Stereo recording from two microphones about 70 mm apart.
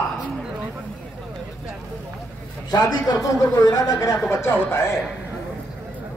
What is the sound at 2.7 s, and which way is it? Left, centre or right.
Speech, left.